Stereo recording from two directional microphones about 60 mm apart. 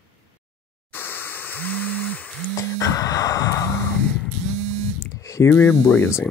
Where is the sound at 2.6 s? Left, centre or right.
Left.